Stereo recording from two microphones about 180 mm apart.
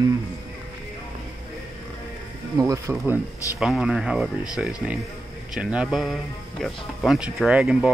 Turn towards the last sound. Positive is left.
turn(degrees=-5)  # may be behind; listen again after turning